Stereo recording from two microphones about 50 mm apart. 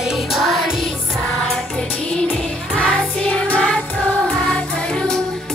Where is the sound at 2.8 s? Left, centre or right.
Centre.